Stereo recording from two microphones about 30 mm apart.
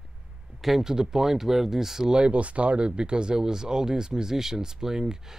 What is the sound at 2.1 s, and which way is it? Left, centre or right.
Speech, right.